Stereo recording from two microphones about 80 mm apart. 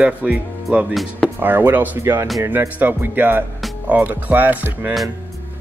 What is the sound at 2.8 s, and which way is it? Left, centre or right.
Speech, right.